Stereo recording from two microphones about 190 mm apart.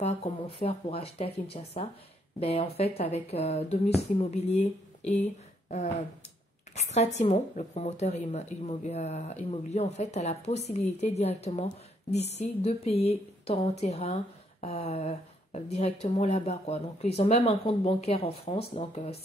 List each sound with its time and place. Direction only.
0.0 s a woman's voice: 25° left (ahead or behind)